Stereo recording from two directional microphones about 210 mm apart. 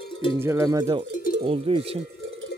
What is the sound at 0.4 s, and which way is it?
Speech, 15° right (ahead or behind).